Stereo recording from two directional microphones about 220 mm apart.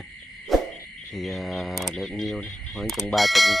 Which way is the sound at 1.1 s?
Centre (ahead or behind).